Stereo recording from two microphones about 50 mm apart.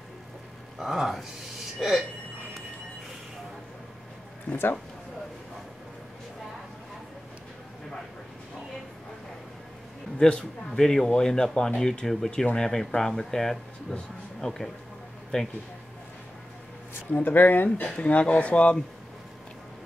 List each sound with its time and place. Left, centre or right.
0.7 s speech: centre
4.5 s speech: centre
10.1 s a man's voice: centre
17.1 s speech: left
17.8 s speech: left